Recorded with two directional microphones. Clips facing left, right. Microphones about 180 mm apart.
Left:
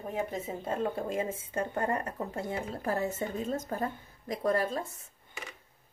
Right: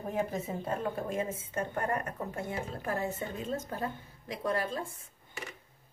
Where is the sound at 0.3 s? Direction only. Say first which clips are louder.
Even; 25° left (ahead or behind).